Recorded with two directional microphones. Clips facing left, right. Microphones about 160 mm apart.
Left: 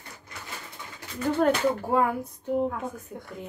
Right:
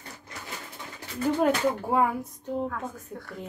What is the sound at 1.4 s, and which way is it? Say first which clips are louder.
Speech: left 2 dB; 5° right (ahead or behind).